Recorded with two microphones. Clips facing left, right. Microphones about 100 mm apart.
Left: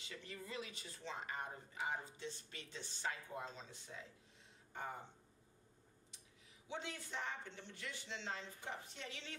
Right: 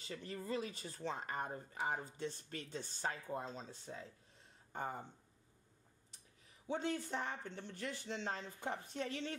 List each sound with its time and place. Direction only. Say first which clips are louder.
0.0 s speech: right 6 dB; 40° right (ahead or behind)
6.7 s speech: right 8 dB; 45° right (ahead or behind)